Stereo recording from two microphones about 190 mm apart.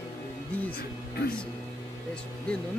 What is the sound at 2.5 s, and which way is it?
Speech, 5° left (ahead or behind).